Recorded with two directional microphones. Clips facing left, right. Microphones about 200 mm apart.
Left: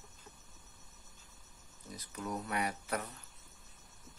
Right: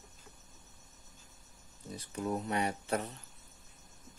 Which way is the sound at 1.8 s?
30° right (ahead or behind).